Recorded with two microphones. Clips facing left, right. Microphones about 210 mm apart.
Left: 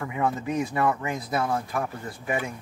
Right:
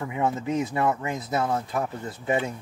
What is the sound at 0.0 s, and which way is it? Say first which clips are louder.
Speech: right 1 dB; 20° right (ahead or behind).